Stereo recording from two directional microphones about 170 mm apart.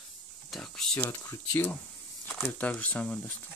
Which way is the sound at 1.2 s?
20° left (ahead or behind).